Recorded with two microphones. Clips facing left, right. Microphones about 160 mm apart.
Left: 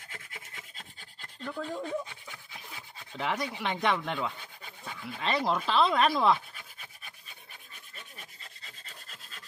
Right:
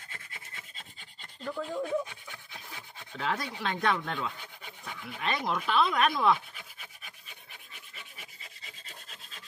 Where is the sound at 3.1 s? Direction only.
20° left (ahead or behind).